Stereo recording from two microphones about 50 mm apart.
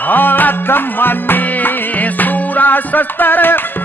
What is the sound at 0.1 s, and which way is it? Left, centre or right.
Music, left.